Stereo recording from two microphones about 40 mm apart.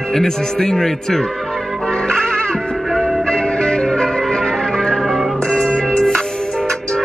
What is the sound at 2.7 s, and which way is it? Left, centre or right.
Music, centre.